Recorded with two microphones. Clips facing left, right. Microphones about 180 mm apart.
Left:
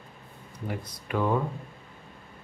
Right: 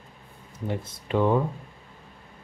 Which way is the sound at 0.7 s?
25° right (ahead or behind).